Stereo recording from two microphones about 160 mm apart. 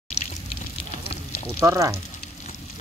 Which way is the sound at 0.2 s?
40° left (ahead or behind).